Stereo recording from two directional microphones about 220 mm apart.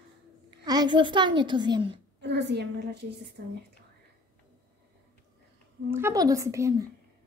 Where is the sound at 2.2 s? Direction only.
50° right (ahead or behind).